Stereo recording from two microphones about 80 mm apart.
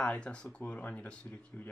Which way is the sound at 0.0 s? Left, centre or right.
Centre.